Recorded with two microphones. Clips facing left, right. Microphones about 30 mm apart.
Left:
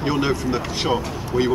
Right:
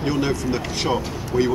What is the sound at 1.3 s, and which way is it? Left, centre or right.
Speech, left.